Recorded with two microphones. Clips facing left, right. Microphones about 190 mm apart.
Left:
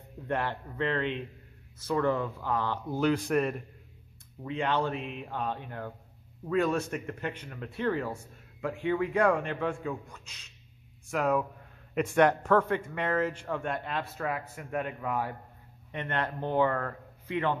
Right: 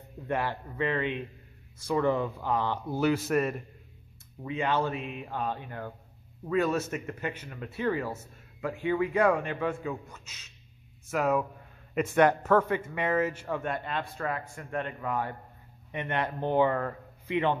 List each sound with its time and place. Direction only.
0.3 s a man's voice: 5° right (ahead or behind)
15.9 s speech: 10° right (ahead or behind)